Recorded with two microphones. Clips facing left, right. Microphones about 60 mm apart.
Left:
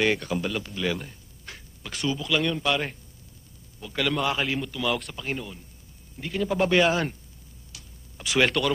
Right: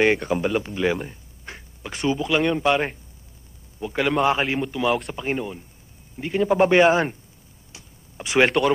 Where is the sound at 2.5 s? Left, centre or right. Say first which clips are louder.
Right 6 dB; right.